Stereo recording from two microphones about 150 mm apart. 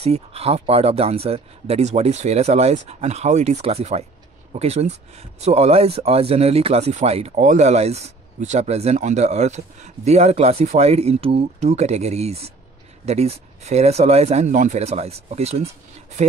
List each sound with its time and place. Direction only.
0.0 s speech: 45° right (ahead or behind)